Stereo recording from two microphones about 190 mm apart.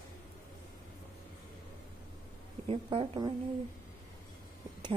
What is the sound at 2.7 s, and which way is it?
Speech, 30° right (ahead or behind).